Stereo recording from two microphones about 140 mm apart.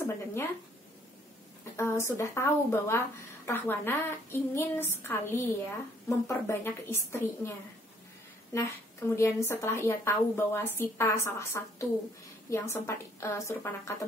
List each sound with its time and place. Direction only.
0.0 s a sound: 20° left (ahead or behind)
1.6 s a woman's voice: 20° left (ahead or behind)
8.5 s a woman's voice: 20° left (ahead or behind)